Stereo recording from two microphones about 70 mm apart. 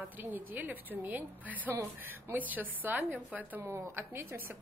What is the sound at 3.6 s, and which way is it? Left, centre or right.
Speech, right.